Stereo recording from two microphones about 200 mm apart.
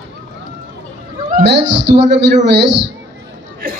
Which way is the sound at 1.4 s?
60° right (ahead or behind).